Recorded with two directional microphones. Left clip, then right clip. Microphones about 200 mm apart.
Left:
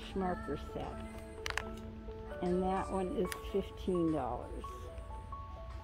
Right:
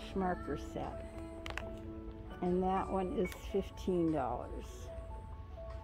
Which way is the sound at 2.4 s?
Centre (ahead or behind).